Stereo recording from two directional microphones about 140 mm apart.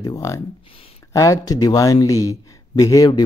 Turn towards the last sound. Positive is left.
turn(degrees=30)  # may be behind; listen again after turning